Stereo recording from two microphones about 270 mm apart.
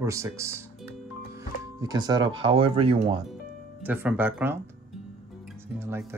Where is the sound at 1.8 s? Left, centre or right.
Centre.